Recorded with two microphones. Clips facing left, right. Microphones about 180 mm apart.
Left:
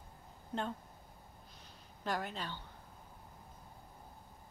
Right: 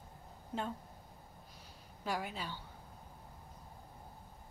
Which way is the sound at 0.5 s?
5° right (ahead or behind).